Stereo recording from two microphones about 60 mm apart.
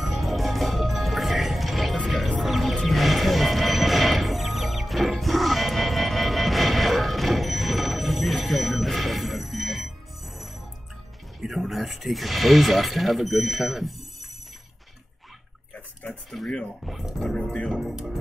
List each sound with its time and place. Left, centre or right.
0.0 s music: centre
11.4 s speech: centre
15.7 s a sound: left
16.4 s speech: centre
16.8 s speech: centre
17.2 s speech: centre
17.7 s speech: centre